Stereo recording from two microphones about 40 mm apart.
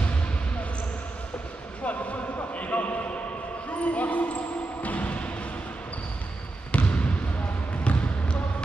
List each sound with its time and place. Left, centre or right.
0.0 s basketball bounce: left
1.9 s a sound: left
3.7 s basketball bounce: left
6.7 s trickle: left